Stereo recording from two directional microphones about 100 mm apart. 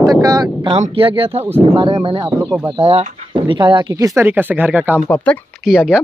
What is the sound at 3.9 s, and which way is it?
Speech, 35° right (ahead or behind).